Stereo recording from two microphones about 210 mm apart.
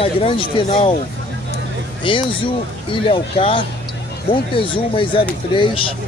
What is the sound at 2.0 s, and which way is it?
Speech, 25° left (ahead or behind).